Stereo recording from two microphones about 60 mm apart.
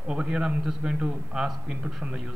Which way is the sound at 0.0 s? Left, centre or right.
Centre.